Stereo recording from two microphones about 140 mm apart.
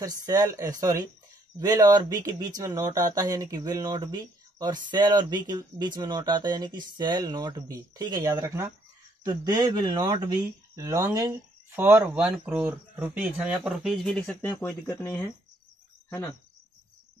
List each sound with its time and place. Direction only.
0.3 s speech: 25° right (ahead or behind); by 15.2 s 15° left (ahead or behind)